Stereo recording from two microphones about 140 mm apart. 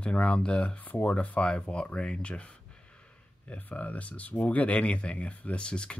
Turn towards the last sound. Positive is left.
turn(degrees=5)  # may be behind; listen again after turning